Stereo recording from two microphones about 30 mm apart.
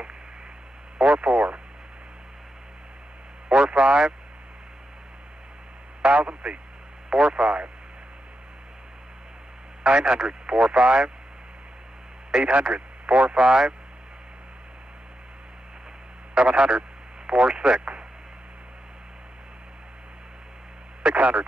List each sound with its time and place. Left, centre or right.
0.9 s radio: right
3.4 s vehicle: right
6.0 s a man's voice: right
7.1 s speech: right
9.8 s speech: right
12.3 s speech: right
12.5 s speech: right
13.3 s speech: right
16.3 s speech: right
21.0 s speech: right